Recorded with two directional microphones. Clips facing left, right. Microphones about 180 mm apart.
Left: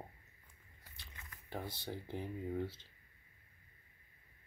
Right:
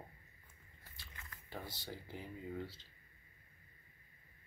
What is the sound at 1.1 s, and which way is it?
Speech, 15° left (ahead or behind).